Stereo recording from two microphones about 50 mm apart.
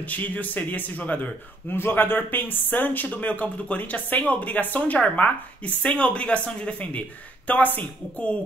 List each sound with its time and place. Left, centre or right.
0.0 s speech: left
1.7 s speech: left